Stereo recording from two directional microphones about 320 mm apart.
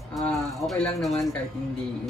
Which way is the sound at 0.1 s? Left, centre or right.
Centre.